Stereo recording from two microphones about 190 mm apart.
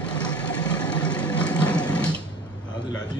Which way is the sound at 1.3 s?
5° left (ahead or behind).